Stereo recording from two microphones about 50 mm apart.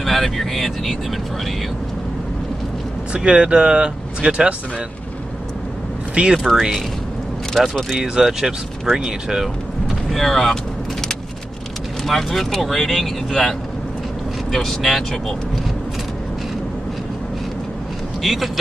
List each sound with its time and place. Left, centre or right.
0.0 s speech: centre
3.1 s speech: centre
6.3 s speech: centre
8.0 s speech: centre
8.9 s vehicle: centre
10.1 s vehicle: centre
12.1 s speech: centre
18.2 s speech: centre